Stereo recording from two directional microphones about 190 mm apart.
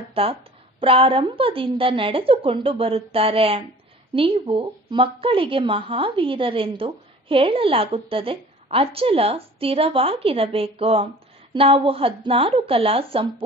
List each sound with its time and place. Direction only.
0.1 s speech: 30° right (ahead or behind)